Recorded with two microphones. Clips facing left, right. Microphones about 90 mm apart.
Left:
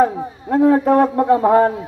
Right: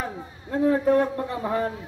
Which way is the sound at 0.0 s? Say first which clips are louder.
Left 16 dB; 65° left (ahead or behind).